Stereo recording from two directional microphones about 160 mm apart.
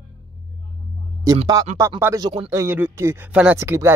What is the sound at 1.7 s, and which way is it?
Speech, 15° right (ahead or behind).